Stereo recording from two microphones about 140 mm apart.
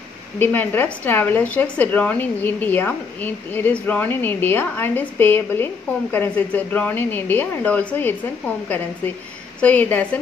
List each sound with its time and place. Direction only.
0.4 s a woman's voice: 15° left (ahead or behind)